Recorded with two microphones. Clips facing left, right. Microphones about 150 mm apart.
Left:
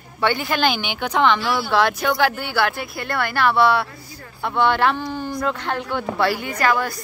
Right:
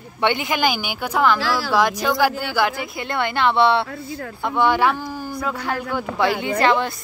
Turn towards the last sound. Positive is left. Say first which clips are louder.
# right 2 dB
turn(degrees=-25)  # may be behind; listen again after turning